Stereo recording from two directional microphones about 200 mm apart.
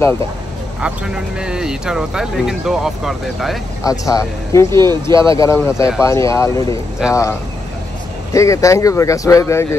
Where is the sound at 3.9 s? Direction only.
15° left (ahead or behind).